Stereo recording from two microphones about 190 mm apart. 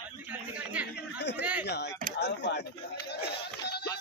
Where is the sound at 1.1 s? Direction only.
60° left (ahead or behind).